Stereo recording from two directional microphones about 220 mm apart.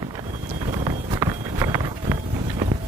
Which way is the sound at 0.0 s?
20° right (ahead or behind).